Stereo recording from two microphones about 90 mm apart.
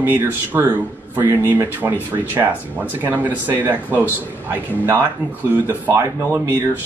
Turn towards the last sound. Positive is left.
turn(degrees=-30)  # may be behind; listen again after turning